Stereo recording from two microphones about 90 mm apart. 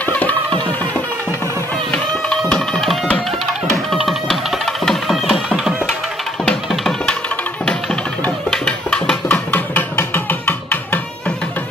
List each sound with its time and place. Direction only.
0.0 s music: 20° left (ahead or behind)
1.9 s music: 10° left (ahead or behind)
9.5 s music: 25° left (ahead or behind)